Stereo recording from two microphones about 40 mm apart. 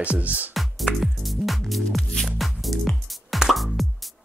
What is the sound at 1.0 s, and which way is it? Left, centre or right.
Music, centre.